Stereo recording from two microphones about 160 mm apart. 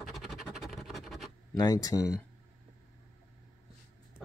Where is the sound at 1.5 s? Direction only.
25° left (ahead or behind).